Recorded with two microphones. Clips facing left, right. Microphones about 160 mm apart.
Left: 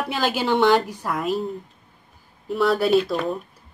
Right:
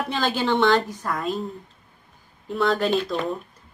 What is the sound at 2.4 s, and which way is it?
Speech, 5° left (ahead or behind).